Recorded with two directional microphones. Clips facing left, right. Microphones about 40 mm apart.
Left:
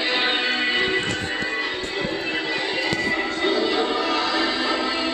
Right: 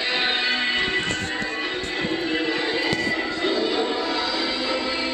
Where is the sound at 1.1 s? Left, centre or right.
Centre.